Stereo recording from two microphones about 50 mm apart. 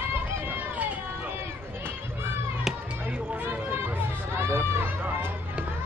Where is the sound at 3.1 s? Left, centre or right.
Right.